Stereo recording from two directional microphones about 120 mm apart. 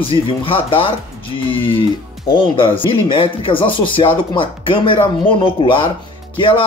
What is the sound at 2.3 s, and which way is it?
Speech, 45° left (ahead or behind).